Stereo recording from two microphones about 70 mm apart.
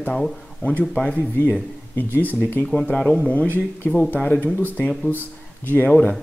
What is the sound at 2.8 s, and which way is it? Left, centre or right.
Speech, centre.